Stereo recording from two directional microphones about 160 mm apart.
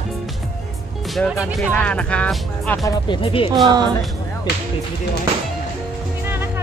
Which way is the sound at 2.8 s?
30° left (ahead or behind).